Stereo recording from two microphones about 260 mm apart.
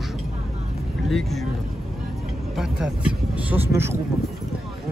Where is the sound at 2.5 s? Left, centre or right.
Centre.